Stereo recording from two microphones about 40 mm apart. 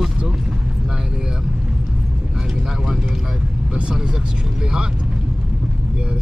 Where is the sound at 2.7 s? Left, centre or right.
Centre.